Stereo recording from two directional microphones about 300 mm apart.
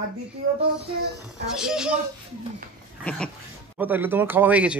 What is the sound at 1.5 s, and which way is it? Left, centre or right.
Speech, centre.